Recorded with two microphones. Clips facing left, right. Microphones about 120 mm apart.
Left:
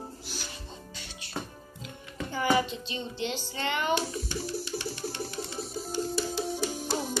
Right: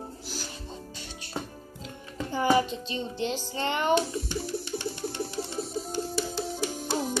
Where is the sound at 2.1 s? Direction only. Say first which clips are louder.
Right 3 dB; 30° right (ahead or behind).